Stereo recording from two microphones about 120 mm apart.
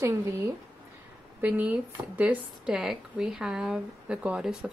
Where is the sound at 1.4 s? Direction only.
10° right (ahead or behind).